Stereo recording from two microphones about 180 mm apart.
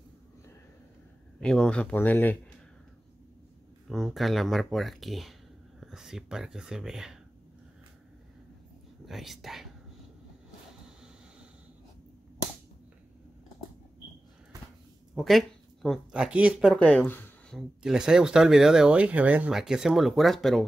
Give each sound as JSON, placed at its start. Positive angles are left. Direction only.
{"t": 1.4, "sound": "speech", "side_deg": 5}
{"t": 3.9, "sound": "speech", "side_deg": 0}
{"t": 9.0, "sound": "speech", "side_deg": 0}
{"t": 15.1, "sound": "speech", "side_deg": 0}
{"t": 16.7, "sound": "speech", "side_deg": 5}